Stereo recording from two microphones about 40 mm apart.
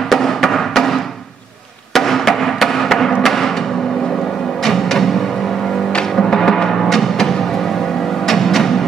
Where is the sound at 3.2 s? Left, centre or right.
Centre.